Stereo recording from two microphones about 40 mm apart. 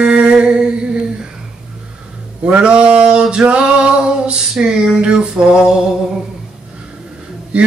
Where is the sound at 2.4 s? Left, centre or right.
Right.